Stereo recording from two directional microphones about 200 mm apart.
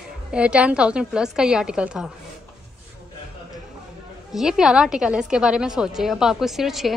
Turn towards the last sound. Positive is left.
turn(degrees=0)  # may be behind; listen again after turning